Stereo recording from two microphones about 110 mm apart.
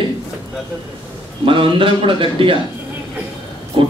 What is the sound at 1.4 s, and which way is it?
A man's voice, 55° right (ahead or behind).